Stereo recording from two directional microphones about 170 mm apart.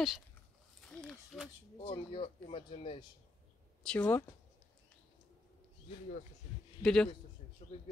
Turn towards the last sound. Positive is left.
turn(degrees=35)  # may be behind; listen again after turning